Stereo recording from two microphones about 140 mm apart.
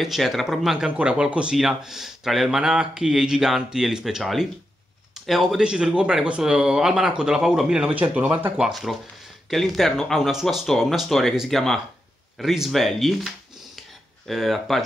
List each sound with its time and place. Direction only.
0.0 s speech: centre (ahead or behind)